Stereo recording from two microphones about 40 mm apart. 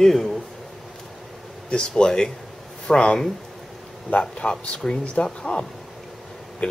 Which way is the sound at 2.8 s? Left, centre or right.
Centre.